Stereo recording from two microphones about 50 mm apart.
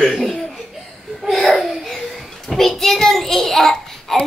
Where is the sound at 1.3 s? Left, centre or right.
Centre.